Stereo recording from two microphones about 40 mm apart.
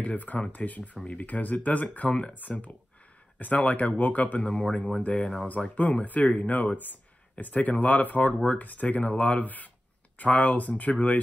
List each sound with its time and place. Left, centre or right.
0.0 s speech: left
2.3 s speech: left